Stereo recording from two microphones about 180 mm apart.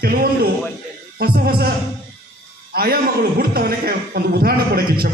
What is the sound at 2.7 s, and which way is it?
A man's voice, 55° right (ahead or behind).